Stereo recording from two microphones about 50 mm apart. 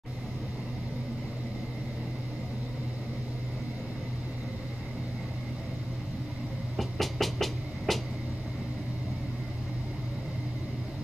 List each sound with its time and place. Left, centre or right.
6.8 s vehicle: centre